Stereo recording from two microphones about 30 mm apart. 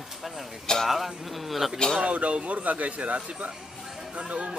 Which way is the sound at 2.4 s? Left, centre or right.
Right.